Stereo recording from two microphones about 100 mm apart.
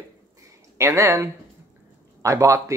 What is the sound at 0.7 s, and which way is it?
Speech, 30° right (ahead or behind).